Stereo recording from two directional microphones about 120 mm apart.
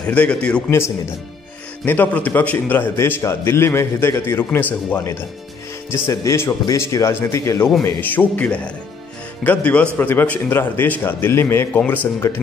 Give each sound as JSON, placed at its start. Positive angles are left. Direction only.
{"t": 0.0, "sound": "a man's voice", "side_deg": 10}
{"t": 0.7, "sound": "a man's voice", "side_deg": 20}